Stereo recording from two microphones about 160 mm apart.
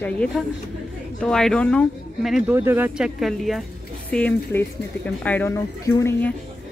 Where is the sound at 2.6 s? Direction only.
15° right (ahead or behind); by 6.3 s 15° left (ahead or behind).